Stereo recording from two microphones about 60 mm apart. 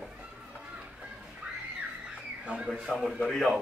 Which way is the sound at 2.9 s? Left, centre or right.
Centre.